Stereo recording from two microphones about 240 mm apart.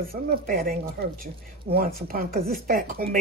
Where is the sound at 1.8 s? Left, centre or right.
Right.